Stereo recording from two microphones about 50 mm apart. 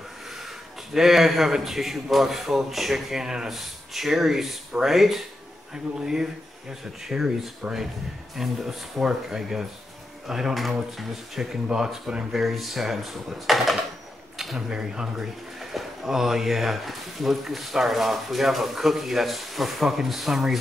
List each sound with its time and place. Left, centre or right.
0.9 s speech: centre
7.6 s speech: right
8.4 s speech: centre
11.6 s speech: centre
12.3 s speech: centre
14.7 s speech: centre